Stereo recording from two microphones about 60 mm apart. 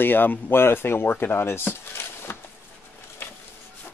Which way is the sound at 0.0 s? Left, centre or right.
Left.